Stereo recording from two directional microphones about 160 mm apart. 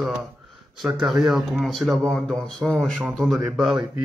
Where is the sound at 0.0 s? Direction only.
Centre (ahead or behind).